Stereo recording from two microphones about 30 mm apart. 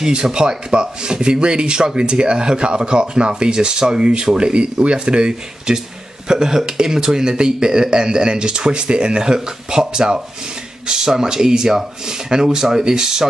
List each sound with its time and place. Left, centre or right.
0.0 s a man's voice: right